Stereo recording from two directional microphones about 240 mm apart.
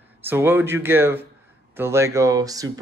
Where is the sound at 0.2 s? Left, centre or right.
Centre.